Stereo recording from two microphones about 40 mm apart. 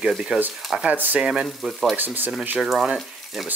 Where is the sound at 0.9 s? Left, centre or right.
Right.